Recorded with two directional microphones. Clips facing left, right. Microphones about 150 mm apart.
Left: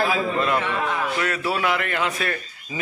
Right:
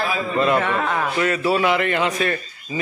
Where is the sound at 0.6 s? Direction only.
55° right (ahead or behind).